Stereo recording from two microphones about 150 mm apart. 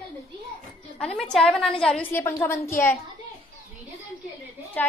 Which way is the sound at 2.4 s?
15° left (ahead or behind).